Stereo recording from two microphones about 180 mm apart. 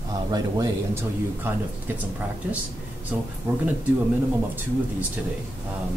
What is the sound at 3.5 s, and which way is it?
Speech, 15° right (ahead or behind).